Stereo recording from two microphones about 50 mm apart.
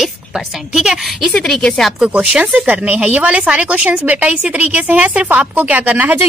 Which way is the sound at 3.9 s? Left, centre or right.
Right.